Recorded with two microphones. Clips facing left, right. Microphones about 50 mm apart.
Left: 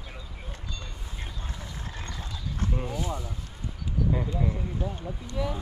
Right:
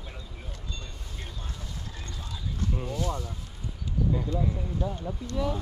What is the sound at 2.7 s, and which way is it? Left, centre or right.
Speech, centre.